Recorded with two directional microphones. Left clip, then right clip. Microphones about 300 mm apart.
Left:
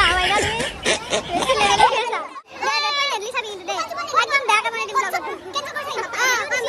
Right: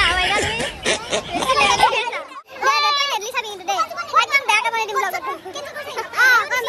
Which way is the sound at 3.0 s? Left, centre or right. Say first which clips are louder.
Right 1 dB; centre.